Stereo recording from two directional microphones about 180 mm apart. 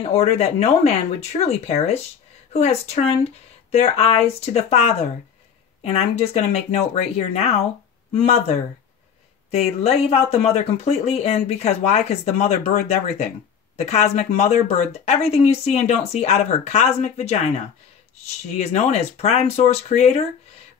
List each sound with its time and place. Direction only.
0.0 s a woman's voice: 35° left (ahead or behind)